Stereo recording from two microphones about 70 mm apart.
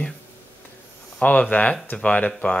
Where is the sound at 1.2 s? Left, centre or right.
Centre.